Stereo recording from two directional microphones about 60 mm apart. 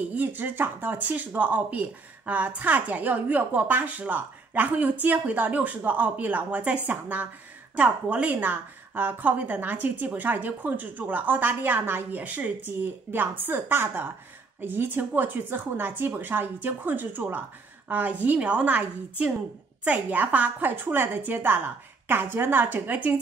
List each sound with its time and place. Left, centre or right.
0.1 s a woman's voice: right
7.7 s a woman's voice: centre